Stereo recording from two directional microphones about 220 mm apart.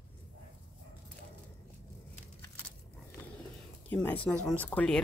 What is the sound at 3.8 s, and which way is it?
Speech, 5° left (ahead or behind).